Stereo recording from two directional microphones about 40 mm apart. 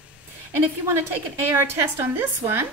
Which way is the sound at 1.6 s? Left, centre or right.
Right.